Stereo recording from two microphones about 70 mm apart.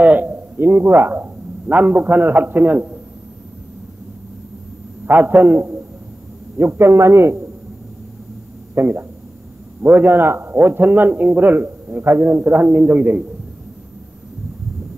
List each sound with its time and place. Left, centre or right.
0.0 s a man's voice: right
5.0 s a man's voice: right
8.7 s a sound: right
9.8 s a man's voice: right